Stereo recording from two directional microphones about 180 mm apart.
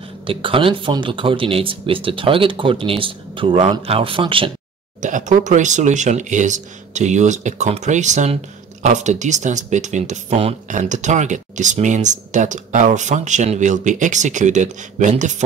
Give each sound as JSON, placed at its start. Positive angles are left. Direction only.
{"t": 0.3, "sound": "speech", "side_deg": -30}
{"t": 5.0, "sound": "speech", "side_deg": -45}